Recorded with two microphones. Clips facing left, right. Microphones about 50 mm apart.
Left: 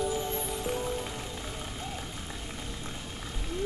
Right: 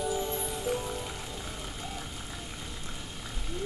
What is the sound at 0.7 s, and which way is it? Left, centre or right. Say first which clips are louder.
Music: right 2 dB; centre.